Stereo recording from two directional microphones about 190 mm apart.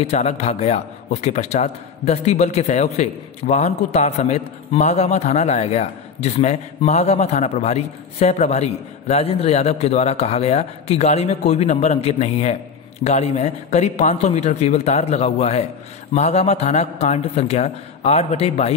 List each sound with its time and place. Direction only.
0.0 s a man's voice: 35° left (ahead or behind)